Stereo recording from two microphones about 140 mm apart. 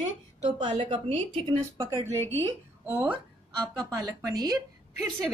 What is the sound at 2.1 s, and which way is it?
Speech, 15° left (ahead or behind).